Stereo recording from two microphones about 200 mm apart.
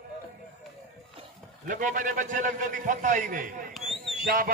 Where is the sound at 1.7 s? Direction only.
40° right (ahead or behind).